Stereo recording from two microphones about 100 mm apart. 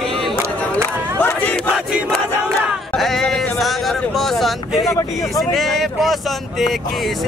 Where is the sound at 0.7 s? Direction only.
20° left (ahead or behind).